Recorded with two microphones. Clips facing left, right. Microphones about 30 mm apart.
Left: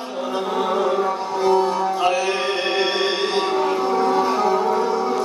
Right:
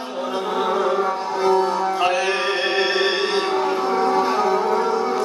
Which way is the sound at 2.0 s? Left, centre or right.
Right.